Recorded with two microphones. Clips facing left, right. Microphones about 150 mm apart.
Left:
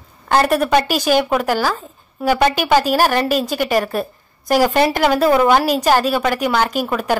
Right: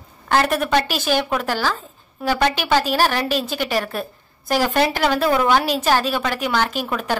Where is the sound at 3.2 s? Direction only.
45° left (ahead or behind).